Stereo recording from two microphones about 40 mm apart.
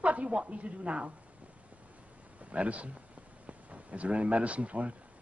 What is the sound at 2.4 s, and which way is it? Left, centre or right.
A man's voice, right.